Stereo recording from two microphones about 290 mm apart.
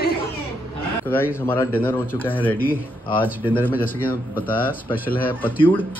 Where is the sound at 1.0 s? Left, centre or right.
Centre.